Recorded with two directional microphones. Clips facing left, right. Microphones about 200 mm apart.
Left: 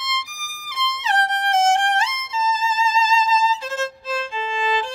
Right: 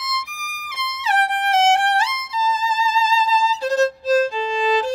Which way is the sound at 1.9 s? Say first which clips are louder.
Right 1 dB; 35° right (ahead or behind).